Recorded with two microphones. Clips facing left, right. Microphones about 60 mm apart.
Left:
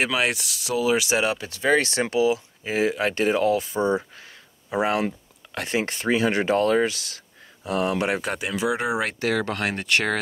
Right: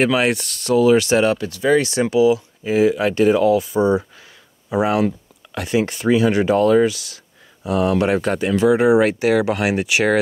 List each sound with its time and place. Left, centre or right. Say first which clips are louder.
0.0 s speech: right 6 dB; centre
1.5 s speech: right 4 dB; left
4.8 s speech: right 5 dB; left
7.9 s speech: right 7 dB; centre
9.2 s speech: right 7 dB; centre